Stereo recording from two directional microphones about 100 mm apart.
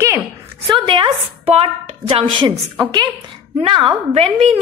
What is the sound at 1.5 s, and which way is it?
Speech, 90° right.